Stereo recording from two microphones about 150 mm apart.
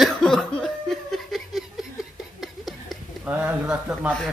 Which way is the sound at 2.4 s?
Centre (ahead or behind).